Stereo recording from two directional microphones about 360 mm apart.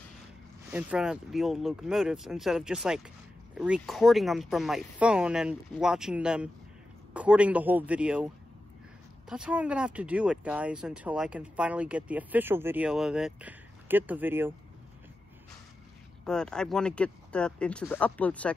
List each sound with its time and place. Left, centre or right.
0.7 s speech: centre
9.3 s speech: centre
16.3 s speech: centre